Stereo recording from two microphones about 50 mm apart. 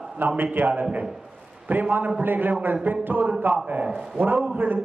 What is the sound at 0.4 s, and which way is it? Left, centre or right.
A man's voice, right.